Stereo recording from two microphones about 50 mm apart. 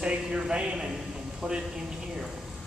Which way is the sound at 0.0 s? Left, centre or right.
Centre.